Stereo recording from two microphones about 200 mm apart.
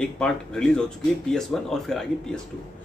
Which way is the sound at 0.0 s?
5° left (ahead or behind).